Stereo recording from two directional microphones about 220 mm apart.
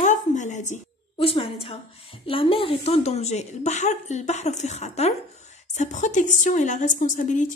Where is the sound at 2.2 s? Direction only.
25° left (ahead or behind).